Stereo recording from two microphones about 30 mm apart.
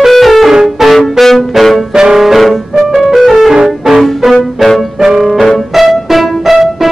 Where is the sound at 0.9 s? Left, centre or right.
Centre.